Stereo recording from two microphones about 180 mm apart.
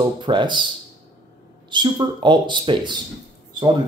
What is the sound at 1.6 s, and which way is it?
Speech, 25° right (ahead or behind).